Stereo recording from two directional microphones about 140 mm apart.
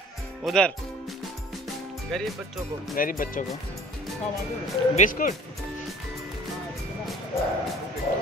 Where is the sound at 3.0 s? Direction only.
80° left.